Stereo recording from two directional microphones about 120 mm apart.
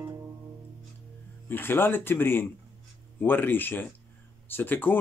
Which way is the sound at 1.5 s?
15° left (ahead or behind).